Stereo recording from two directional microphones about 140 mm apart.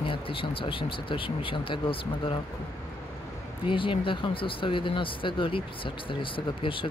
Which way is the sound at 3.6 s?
35° left (ahead or behind).